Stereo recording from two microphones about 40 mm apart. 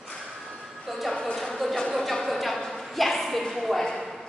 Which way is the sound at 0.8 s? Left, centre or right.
Centre.